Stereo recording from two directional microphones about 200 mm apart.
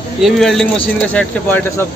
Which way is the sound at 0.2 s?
Centre (ahead or behind).